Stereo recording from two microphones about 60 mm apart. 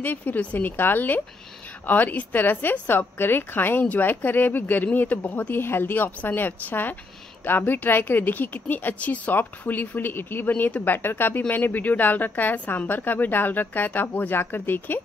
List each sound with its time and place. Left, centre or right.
0.0 s a woman's voice: left